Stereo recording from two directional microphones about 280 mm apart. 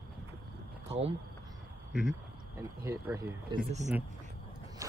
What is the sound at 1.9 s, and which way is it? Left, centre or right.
Speech, centre.